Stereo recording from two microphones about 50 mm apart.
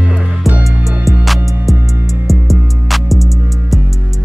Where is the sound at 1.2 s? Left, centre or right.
Centre.